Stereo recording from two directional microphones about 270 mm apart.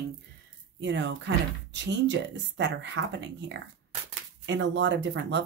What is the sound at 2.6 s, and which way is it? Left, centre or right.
Speech, right.